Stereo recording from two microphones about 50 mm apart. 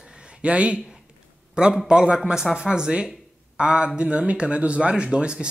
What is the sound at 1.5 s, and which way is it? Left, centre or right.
Speech, centre.